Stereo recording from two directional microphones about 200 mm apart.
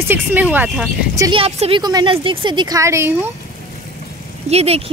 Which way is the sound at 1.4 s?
25° right (ahead or behind).